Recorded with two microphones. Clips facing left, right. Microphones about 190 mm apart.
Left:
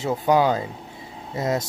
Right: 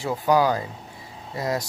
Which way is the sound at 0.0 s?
20° left (ahead or behind).